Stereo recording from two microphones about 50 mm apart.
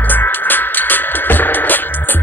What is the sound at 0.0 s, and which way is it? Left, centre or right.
Music, left.